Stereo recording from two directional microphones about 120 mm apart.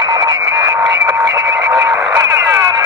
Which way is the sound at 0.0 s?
30° right (ahead or behind).